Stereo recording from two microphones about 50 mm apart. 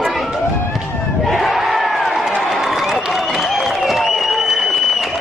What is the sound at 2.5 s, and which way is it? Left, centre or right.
Applause, centre.